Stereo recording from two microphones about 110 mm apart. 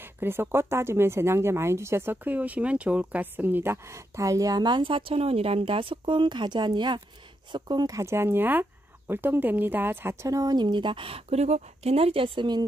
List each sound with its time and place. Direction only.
0.0 s speech: 20° right (ahead or behind); by 12.6 s 45° right (ahead or behind)